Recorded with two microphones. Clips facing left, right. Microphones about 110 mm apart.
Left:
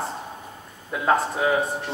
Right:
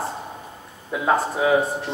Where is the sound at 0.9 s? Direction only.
5° right (ahead or behind).